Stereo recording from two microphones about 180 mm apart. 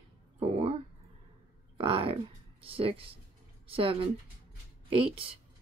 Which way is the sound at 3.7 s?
30° right (ahead or behind).